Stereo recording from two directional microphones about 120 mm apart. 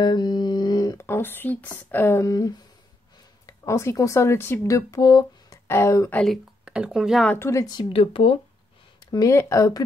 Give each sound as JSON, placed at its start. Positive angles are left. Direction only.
{"t": 0.0, "sound": "a sound", "side_deg": 35}
{"t": 0.9, "sound": "speech", "side_deg": 20}
{"t": 6.1, "sound": "speech", "side_deg": 0}
{"t": 7.3, "sound": "speech", "side_deg": 20}
{"t": 7.9, "sound": "speech", "side_deg": 50}
{"t": 9.0, "sound": "speech", "side_deg": 30}